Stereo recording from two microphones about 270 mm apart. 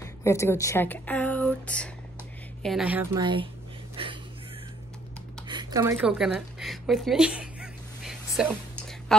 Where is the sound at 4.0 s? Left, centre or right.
Centre.